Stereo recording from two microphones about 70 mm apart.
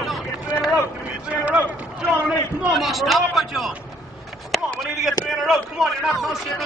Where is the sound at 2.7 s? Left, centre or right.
Centre.